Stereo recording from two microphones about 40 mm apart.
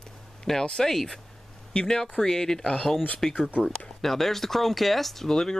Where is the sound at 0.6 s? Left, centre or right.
Centre.